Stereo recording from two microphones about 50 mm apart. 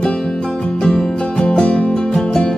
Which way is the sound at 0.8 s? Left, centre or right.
Centre.